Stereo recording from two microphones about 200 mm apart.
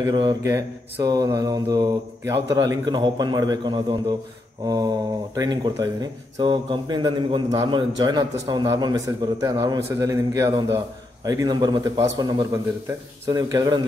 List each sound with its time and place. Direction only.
0.0 s a man's voice: 20° right (ahead or behind)